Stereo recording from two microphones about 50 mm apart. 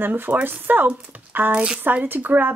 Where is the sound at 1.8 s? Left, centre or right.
Right.